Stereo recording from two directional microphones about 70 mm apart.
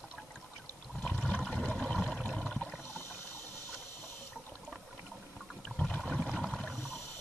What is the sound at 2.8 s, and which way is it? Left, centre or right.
Water, left.